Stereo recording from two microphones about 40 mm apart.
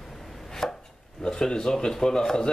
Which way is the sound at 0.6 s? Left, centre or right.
Centre.